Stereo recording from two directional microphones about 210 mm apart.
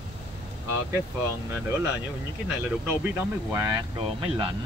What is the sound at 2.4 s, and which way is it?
Speech, 10° right (ahead or behind).